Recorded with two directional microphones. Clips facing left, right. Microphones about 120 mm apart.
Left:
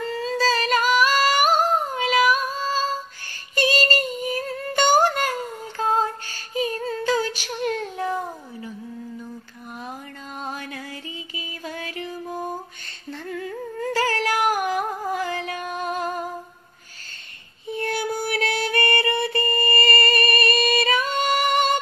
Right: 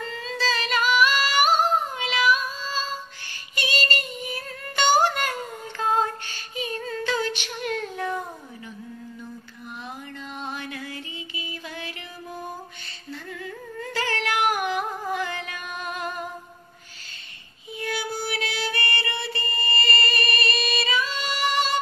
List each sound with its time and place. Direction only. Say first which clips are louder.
0.1 s music: left 6 dB; 40° left (ahead or behind)
3.5 s child singing: left 6 dB; 40° left (ahead or behind)
10.4 s music: left 2 dB; 40° left (ahead or behind)
13.7 s music: left 5 dB; 40° left (ahead or behind)
17.7 s music: left 4 dB; 55° left (ahead or behind)